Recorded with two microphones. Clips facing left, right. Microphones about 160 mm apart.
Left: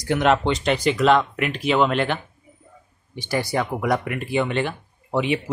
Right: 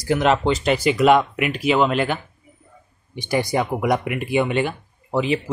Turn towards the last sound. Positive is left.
turn(degrees=0)  # may be behind; listen again after turning